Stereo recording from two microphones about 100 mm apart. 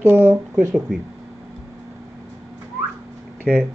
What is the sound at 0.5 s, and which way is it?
Speech, centre (ahead or behind).